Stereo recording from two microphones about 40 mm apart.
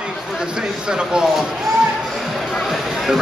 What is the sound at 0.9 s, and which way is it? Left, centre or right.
Speech, centre.